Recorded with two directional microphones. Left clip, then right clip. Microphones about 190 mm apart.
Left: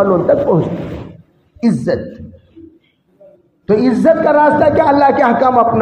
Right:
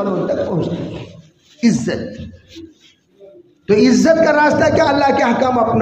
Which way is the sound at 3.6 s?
35° left (ahead or behind).